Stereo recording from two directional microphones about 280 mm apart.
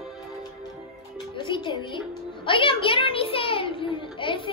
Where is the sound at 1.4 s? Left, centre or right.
Centre.